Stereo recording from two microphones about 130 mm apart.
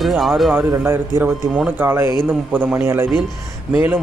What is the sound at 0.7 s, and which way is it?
A man's voice, 20° right (ahead or behind).